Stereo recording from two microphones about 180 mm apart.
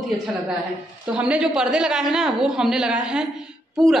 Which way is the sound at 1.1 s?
5° right (ahead or behind).